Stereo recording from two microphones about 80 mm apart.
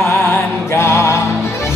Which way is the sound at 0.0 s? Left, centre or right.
Left.